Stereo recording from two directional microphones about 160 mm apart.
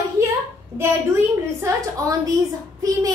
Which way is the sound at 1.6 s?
20° right (ahead or behind).